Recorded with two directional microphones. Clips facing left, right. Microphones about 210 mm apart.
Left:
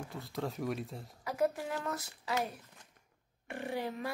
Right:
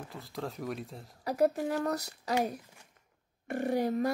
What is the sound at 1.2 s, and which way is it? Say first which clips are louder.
Speech: right 5 dB; 40° right (ahead or behind).